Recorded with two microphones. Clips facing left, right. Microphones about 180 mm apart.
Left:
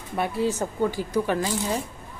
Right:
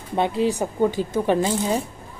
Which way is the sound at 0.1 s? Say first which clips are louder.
Right 4 dB; 20° right (ahead or behind).